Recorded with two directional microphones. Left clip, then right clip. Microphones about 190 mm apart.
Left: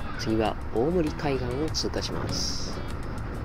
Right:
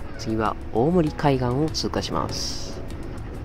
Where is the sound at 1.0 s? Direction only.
35° right (ahead or behind).